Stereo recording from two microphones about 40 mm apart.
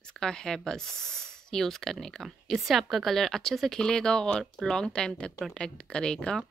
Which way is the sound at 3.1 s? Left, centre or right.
Centre.